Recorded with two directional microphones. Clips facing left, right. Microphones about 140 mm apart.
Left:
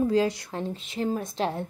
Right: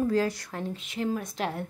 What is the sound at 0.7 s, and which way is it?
Speech, 30° left (ahead or behind).